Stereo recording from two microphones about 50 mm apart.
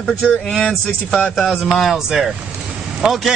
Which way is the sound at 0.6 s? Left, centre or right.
Centre.